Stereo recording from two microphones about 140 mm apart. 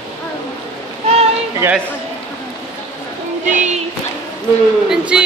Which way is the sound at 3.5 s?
60° right (ahead or behind).